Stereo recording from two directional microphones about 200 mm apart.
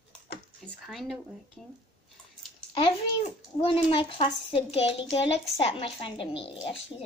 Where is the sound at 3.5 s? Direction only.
30° left (ahead or behind).